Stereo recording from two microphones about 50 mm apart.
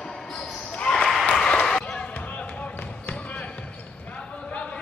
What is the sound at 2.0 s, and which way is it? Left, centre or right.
Basketball bounce, left.